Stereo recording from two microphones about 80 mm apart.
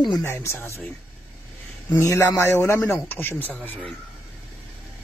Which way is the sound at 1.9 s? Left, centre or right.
Left.